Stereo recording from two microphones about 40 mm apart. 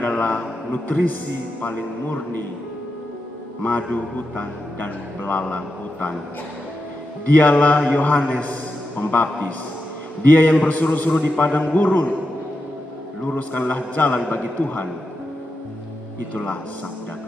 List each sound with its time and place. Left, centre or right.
0.2 s a man's voice: left
3.6 s a man's voice: left
7.2 s a man's voice: left
13.3 s a man's voice: left